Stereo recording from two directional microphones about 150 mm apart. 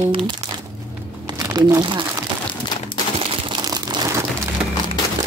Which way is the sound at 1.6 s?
25° right (ahead or behind).